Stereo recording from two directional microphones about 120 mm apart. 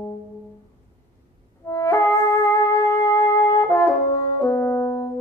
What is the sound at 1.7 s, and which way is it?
Music, 25° left (ahead or behind).